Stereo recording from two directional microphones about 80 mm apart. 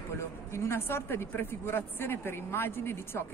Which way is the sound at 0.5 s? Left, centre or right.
Left.